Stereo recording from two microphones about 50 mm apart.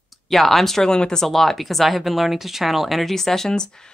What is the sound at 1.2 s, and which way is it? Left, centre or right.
Speech, centre.